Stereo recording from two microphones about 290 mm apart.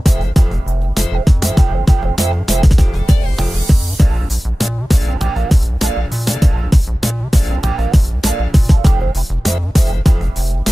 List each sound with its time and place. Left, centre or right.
0.0 s music: centre